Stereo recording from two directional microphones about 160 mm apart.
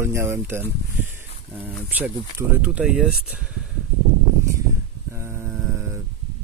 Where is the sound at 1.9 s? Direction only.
10° right (ahead or behind).